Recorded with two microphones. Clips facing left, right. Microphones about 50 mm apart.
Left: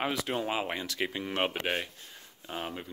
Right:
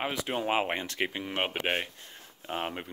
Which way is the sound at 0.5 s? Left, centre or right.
Right.